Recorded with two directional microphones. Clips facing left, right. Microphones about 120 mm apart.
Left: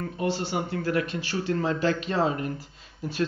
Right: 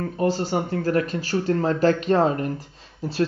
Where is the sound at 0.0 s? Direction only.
40° right (ahead or behind).